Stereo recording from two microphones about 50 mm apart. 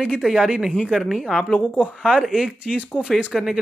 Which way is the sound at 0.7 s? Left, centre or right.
Centre.